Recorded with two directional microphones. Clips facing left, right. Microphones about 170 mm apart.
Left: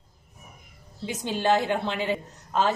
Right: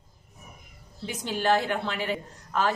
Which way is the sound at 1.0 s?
20° left (ahead or behind).